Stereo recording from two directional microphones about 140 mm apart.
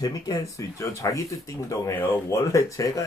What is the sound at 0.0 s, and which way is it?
Speech, 25° left (ahead or behind).